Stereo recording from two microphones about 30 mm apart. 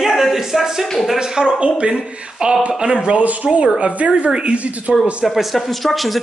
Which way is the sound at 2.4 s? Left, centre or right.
Right.